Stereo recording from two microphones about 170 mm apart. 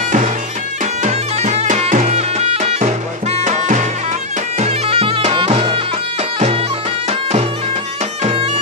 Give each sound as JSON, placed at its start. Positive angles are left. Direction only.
{"t": 1.0, "sound": "music", "side_deg": -45}
{"t": 4.6, "sound": "bagpipes", "side_deg": -35}
{"t": 8.2, "sound": "bagpipes", "side_deg": -35}